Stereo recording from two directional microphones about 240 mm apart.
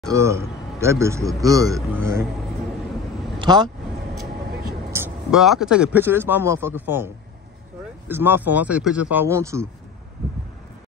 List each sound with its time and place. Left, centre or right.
0.1 s a man's voice: centre
3.3 s speech: centre
4.9 s a man's voice: centre
8.1 s a man's voice: centre